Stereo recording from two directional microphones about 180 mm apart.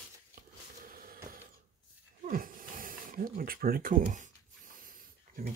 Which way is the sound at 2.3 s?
50° right (ahead or behind).